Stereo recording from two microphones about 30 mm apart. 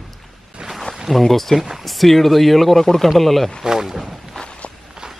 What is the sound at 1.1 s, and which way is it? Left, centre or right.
Speech, centre.